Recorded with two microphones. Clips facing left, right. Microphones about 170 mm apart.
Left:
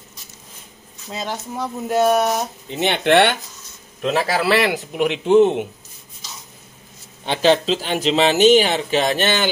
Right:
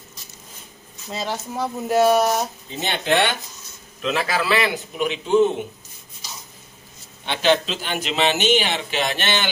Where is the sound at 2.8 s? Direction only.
65° left (ahead or behind).